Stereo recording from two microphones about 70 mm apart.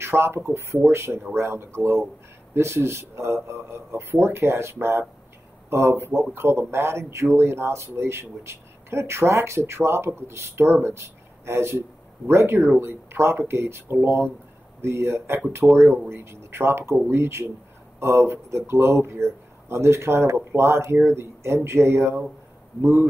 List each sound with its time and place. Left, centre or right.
0.0 s speech: right